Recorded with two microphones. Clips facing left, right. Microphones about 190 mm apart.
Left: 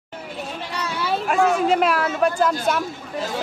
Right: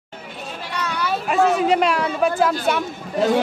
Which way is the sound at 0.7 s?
25° left (ahead or behind).